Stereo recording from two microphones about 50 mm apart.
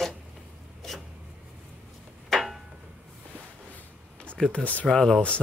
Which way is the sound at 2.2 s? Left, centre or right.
Centre.